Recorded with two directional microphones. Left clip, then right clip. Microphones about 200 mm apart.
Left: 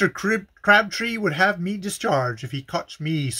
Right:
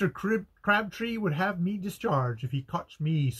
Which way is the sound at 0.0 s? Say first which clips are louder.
Left 7 dB; 15° left (ahead or behind).